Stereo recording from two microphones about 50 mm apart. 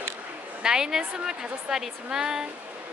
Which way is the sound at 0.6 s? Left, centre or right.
Centre.